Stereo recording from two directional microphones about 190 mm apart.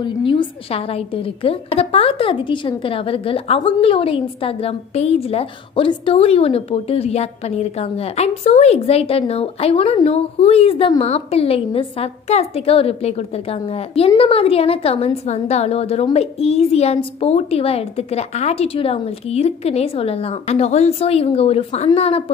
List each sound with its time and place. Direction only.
0.0 s a woman's voice: 25° left (ahead or behind)